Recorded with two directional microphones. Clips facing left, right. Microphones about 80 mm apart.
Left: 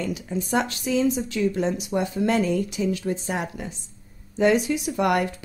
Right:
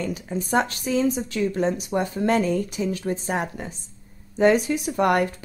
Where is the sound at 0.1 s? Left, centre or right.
Right.